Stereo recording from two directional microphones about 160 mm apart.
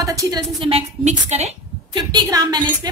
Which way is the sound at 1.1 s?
45° right (ahead or behind).